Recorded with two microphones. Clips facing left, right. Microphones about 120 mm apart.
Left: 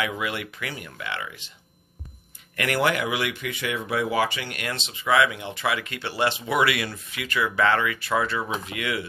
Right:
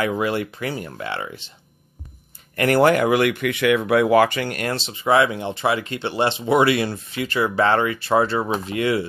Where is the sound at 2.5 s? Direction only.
40° right (ahead or behind).